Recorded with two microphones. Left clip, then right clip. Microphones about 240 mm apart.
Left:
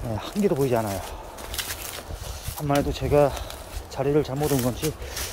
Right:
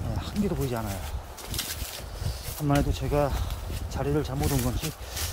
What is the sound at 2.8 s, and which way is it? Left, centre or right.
Speech, centre.